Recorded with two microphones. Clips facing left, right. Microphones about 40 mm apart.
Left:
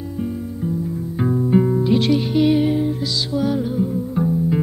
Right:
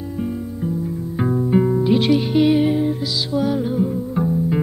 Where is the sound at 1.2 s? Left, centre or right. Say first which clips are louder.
Even; centre.